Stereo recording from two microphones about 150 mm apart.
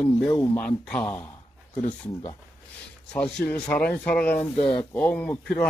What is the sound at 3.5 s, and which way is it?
Speech, 10° left (ahead or behind).